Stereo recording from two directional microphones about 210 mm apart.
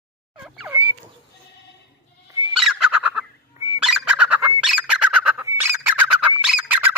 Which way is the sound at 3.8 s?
5° right (ahead or behind).